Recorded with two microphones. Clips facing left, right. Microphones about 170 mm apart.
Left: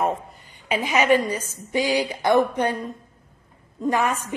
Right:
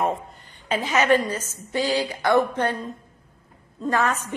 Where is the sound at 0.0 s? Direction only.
5° left (ahead or behind).